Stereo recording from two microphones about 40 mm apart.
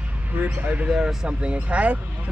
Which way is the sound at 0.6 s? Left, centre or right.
Right.